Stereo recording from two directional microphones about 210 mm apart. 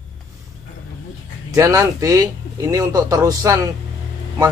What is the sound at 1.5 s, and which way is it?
A man's voice, 15° right (ahead or behind).